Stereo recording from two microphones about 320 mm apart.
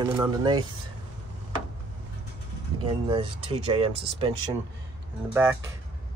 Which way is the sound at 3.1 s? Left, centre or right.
Centre.